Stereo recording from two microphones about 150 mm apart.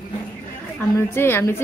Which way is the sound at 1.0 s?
15° left (ahead or behind).